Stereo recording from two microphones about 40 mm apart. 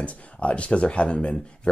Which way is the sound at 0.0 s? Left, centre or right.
Left.